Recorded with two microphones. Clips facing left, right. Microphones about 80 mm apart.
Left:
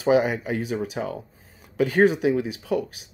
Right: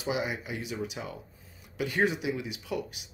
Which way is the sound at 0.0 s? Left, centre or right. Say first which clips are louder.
Left 12 dB; left.